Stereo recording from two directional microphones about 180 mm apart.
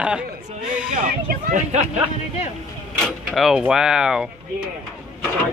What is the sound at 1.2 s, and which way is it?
Speech, 45° right (ahead or behind).